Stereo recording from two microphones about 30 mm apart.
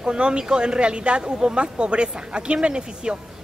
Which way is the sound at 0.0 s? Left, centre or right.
Right.